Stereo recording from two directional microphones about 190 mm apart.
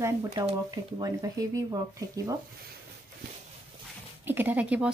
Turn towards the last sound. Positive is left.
turn(degrees=-5)  # may be behind; listen again after turning